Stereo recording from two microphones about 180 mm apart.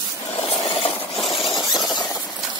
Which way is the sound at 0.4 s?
35° left (ahead or behind).